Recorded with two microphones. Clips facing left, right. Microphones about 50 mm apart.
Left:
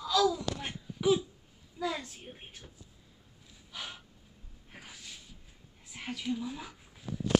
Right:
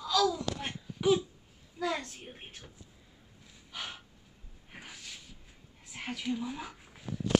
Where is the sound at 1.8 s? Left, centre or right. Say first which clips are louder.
Right 1 dB; centre.